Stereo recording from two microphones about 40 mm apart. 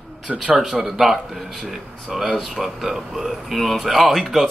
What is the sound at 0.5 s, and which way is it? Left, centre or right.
Speech, centre.